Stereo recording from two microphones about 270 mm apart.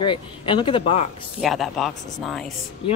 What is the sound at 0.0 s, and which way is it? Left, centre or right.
Speech, centre.